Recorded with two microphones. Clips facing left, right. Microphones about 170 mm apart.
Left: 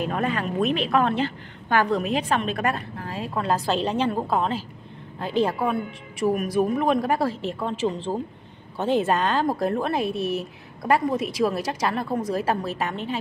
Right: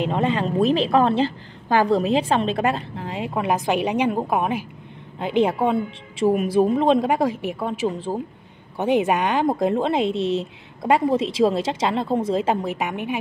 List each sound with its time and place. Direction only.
0.0 s a woman's voice: 25° right (ahead or behind)